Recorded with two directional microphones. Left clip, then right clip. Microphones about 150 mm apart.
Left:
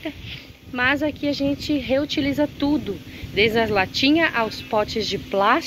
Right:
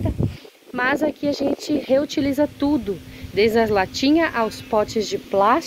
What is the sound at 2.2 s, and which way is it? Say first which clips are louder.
Speech: right 1 dB; 25° right (ahead or behind).